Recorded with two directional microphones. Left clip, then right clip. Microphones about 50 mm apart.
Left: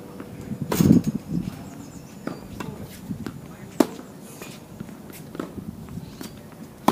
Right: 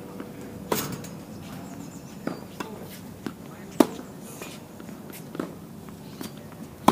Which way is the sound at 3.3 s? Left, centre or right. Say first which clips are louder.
Even; centre.